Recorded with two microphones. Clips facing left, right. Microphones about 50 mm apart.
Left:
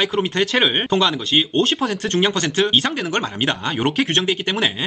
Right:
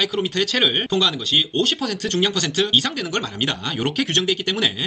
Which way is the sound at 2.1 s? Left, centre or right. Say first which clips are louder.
Left 1 dB; left.